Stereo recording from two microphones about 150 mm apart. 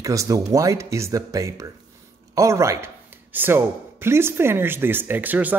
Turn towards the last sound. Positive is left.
turn(degrees=-10)  # may be behind; listen again after turning